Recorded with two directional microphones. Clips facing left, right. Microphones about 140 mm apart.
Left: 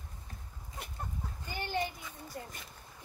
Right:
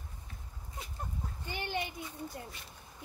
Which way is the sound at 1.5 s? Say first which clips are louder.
Even; 15° right (ahead or behind).